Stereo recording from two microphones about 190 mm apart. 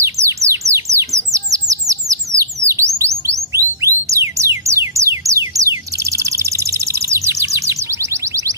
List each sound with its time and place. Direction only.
0.0 s bird: 15° right (ahead or behind)
3.0 s chirp tone: 15° right (ahead or behind)